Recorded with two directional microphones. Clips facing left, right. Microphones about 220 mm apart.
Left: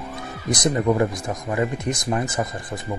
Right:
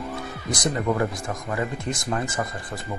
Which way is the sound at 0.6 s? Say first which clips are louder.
Left 4 dB; 20° left (ahead or behind).